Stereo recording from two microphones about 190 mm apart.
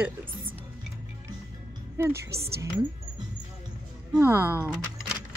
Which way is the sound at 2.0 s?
10° right (ahead or behind).